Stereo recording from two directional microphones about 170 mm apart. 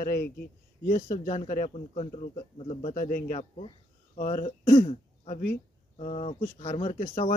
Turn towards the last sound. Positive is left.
turn(degrees=50)  # may be behind; listen again after turning